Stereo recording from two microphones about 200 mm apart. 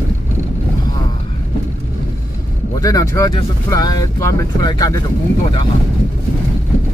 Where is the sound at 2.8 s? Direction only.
15° left (ahead or behind).